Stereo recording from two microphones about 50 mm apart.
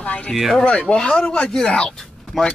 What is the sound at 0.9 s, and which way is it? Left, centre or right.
Speech, centre.